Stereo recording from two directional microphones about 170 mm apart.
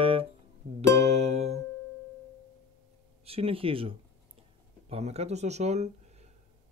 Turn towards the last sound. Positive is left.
turn(degrees=-40)  # may be behind; listen again after turning